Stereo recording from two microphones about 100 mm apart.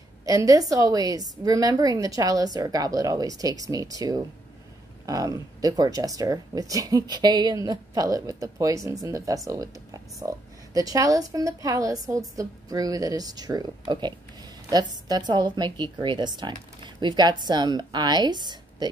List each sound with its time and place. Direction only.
0.2 s a woman's voice: 35° right (ahead or behind)